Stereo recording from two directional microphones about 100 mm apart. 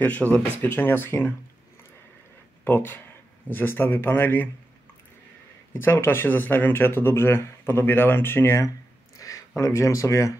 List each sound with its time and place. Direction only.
0.0 s speech: 15° left (ahead or behind)
2.6 s speech: 20° left (ahead or behind)
5.7 s speech: 20° left (ahead or behind)
9.2 s a sound: 35° left (ahead or behind)
9.6 s speech: 30° left (ahead or behind)